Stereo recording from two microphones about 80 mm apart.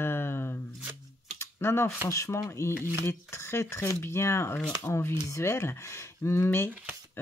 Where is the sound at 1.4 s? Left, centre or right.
Left.